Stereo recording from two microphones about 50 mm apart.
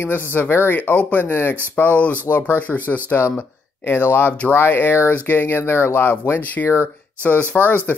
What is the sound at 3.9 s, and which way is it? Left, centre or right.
Speech, left.